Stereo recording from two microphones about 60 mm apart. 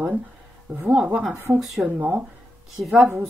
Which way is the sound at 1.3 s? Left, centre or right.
Right.